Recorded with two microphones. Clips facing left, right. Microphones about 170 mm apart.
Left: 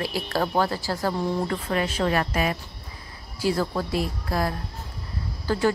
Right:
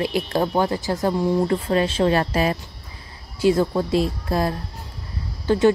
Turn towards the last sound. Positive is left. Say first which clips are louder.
# right 6 dB
turn(degrees=-25)  # may be behind; listen again after turning